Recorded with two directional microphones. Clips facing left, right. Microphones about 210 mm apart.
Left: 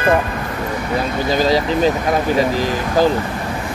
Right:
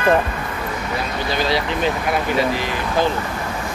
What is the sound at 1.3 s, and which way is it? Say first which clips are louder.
Speech: left 5 dB; 40° left (ahead or behind).